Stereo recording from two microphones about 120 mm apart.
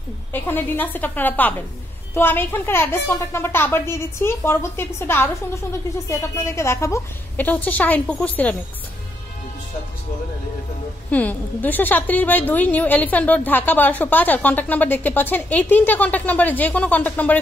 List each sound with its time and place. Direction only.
0.3 s a woman's voice: 15° left (ahead or behind)
11.1 s a woman's voice: 15° left (ahead or behind)